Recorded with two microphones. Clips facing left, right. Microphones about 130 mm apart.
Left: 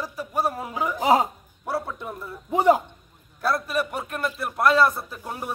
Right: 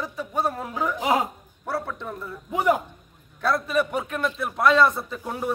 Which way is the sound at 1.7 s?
10° left (ahead or behind).